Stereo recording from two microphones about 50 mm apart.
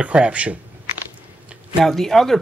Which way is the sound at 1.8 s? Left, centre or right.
Centre.